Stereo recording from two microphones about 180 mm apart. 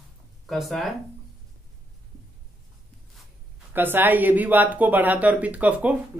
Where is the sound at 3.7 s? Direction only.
10° right (ahead or behind).